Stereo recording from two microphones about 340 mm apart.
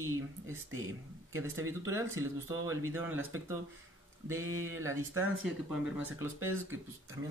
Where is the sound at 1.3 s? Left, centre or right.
Centre.